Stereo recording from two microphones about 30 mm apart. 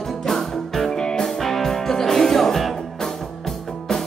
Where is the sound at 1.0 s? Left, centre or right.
Left.